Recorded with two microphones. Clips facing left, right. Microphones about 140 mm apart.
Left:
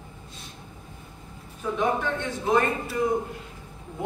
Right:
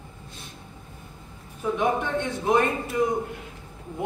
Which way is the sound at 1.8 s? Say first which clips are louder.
Even; 15° right (ahead or behind).